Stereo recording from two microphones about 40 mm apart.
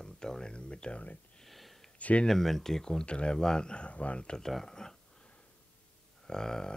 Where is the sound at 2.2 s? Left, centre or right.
Centre.